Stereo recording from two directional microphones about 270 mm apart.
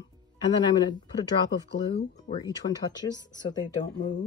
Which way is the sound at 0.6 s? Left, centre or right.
Centre.